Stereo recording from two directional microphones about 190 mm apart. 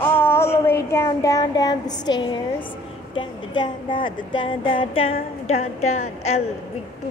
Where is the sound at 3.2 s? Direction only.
25° left (ahead or behind).